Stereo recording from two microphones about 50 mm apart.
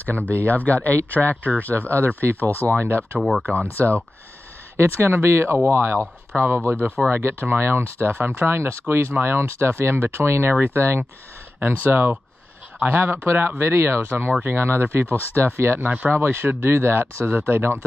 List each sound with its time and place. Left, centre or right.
0.0 s speech: left
2.8 s speech: right
3.2 s speech: centre
3.8 s speech: right
4.7 s speech: right
10.5 s speech: right
15.8 s speech: right
16.1 s speech: right